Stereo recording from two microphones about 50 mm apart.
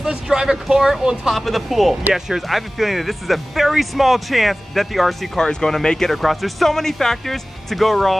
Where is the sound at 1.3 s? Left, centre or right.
Centre.